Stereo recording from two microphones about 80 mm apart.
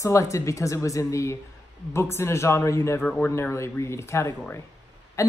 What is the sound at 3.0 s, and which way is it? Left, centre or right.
Speech, centre.